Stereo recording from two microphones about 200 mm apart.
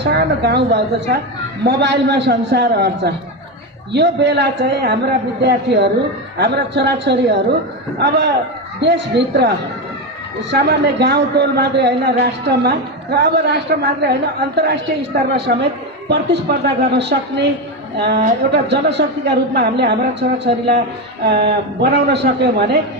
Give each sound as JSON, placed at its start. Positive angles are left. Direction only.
{"t": 0.0, "sound": "a man's voice", "side_deg": -55}
{"t": 8.8, "sound": "a man's voice", "side_deg": -60}
{"t": 10.5, "sound": "a man's voice", "side_deg": -55}